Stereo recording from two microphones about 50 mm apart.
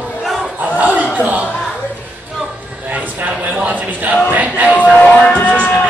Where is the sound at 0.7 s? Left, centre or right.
Right.